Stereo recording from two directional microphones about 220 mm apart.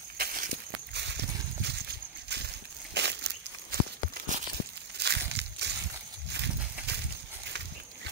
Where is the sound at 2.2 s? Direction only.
50° right (ahead or behind).